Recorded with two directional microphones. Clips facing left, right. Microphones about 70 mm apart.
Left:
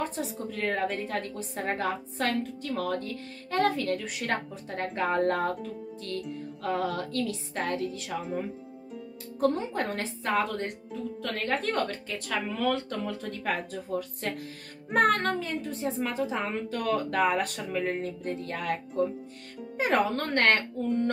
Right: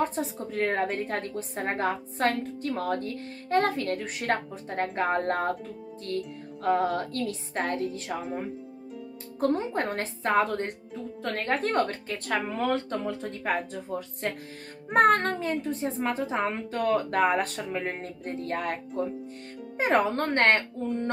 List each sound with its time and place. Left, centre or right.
0.0 s a woman's voice: right
9.4 s a woman's voice: right
13.2 s a woman's voice: right
14.9 s a woman's voice: right
19.8 s a woman's voice: right